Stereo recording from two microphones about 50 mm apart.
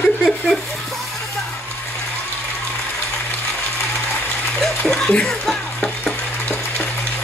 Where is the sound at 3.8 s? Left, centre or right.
Left.